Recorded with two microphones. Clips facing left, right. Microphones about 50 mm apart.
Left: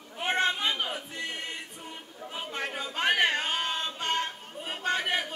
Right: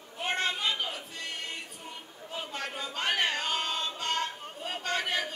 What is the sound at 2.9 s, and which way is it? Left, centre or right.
Music, left.